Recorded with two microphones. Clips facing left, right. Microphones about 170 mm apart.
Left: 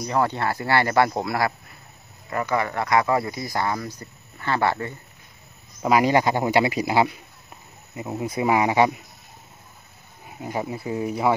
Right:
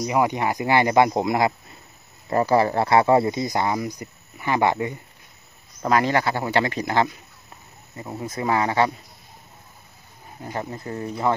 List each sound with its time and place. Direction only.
0.0 s speech: 15° right (ahead or behind)
2.2 s speech: 30° right (ahead or behind); by 4.9 s 15° right (ahead or behind)
5.8 s speech: 10° left (ahead or behind)
10.4 s speech: 10° left (ahead or behind)